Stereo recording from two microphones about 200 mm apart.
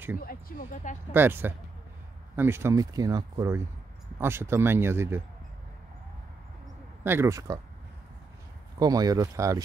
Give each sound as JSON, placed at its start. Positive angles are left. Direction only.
{"t": 0.2, "sound": "speech", "side_deg": 45}
{"t": 1.1, "sound": "speech", "side_deg": -10}
{"t": 7.0, "sound": "speech", "side_deg": -10}
{"t": 8.7, "sound": "speech", "side_deg": -20}